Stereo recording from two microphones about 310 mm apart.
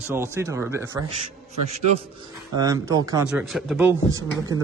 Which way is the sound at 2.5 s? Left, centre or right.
Centre.